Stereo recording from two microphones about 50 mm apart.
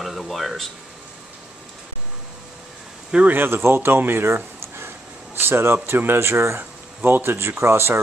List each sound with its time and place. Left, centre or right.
0.0 s speech: centre
3.3 s speech: right
4.6 s a sound: right
5.9 s speech: right